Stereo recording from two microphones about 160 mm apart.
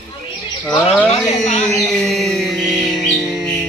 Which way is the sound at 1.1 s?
45° left (ahead or behind).